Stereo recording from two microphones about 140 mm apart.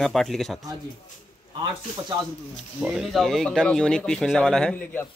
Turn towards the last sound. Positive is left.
turn(degrees=10)  # may be behind; listen again after turning